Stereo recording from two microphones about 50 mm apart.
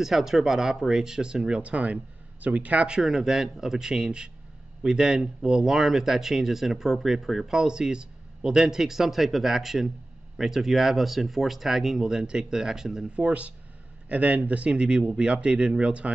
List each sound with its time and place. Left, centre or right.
0.0 s speech: centre; by 3.0 s right
3.0 s speech: centre
13.1 s speech: right